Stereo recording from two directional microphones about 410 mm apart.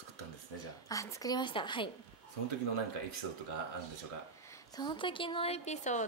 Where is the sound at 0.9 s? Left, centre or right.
Centre.